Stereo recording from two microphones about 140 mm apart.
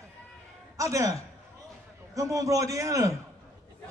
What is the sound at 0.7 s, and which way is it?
A man's voice, 25° right (ahead or behind).